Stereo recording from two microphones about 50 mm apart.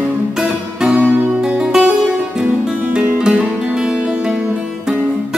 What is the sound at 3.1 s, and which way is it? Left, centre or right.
Music, centre.